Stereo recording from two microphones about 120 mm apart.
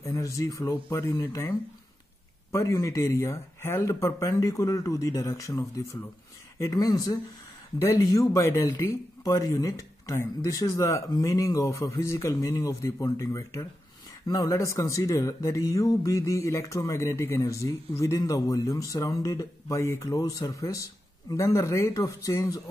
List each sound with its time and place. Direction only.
0.0 s speech: 25° left (ahead or behind)